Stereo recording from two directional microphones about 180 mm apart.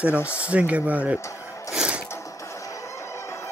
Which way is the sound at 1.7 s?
5° right (ahead or behind).